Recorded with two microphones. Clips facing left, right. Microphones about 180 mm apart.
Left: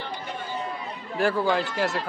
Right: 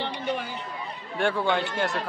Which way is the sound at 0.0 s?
70° right (ahead or behind).